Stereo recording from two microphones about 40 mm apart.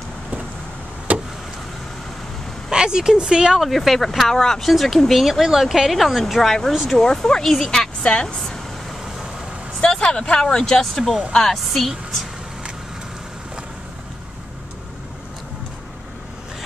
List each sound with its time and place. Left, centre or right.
1.1 s a sound: right
2.7 s speech: centre
3.6 s a woman's voice: centre
5.2 s a woman's voice: centre
7.4 s a woman's voice: centre
8.0 s speech: left
9.8 s a woman's voice: left; by 11.9 s centre